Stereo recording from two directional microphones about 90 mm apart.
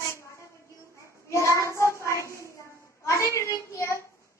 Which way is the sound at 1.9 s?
35° left (ahead or behind).